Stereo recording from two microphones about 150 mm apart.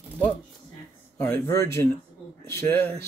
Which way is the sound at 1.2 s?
15° left (ahead or behind).